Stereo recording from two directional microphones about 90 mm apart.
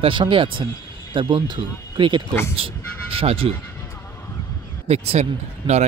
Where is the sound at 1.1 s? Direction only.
60° right (ahead or behind).